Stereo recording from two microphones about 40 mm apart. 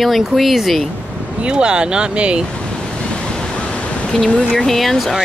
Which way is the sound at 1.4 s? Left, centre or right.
Right.